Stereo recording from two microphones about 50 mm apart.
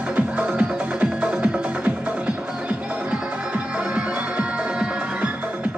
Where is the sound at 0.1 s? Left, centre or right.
Right.